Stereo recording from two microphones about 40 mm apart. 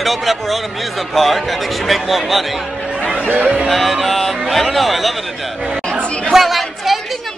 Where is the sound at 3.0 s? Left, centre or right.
Left.